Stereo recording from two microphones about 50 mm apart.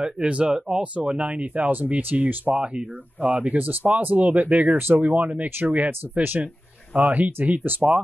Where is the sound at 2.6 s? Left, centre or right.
Right.